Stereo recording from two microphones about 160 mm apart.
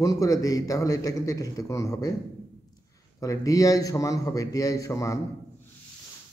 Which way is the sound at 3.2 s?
20° left (ahead or behind).